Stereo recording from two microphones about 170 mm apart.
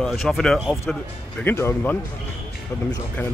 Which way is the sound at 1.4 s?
15° left (ahead or behind).